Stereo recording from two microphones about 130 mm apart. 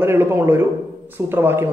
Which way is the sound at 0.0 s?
20° right (ahead or behind).